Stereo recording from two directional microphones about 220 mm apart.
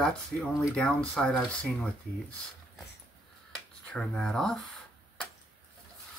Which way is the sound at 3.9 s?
5° left (ahead or behind).